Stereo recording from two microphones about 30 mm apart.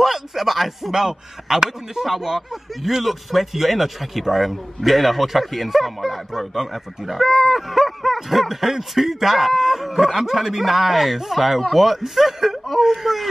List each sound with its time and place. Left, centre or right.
0.0 s a sound: centre
0.9 s speech: right
2.0 s a man's voice: centre
7.2 s a man's voice: centre